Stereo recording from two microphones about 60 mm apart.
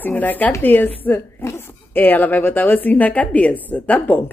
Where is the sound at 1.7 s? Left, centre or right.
Left.